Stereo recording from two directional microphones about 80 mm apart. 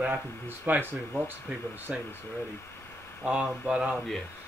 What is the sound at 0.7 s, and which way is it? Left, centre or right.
Speech, right.